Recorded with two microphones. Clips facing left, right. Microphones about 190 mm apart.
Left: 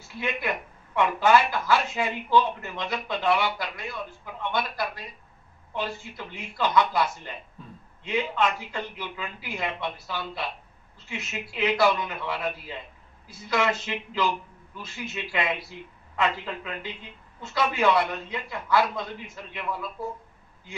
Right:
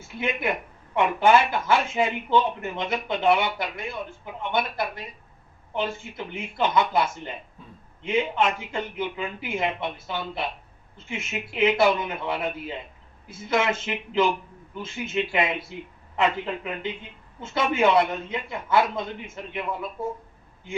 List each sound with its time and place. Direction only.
0.1 s speech: 25° right (ahead or behind)